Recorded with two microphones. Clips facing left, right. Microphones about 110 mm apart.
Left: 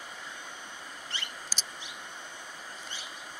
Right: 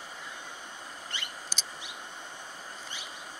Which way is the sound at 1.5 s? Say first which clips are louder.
Even; 55° right (ahead or behind).